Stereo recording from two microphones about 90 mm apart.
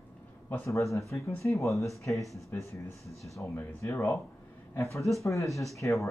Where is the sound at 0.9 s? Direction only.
35° left (ahead or behind).